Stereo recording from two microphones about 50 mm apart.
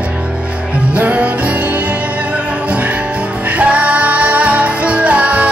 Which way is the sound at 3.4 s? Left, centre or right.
Right.